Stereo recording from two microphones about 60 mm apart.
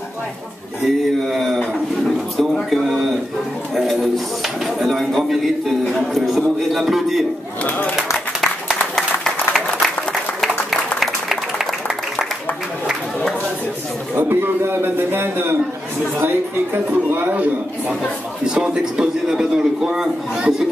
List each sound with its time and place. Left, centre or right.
0.8 s speech: centre
7.6 s speech: left
8.9 s applause: centre
14.1 s a sound: right
16.2 s a man's voice: right; by 20.6 s centre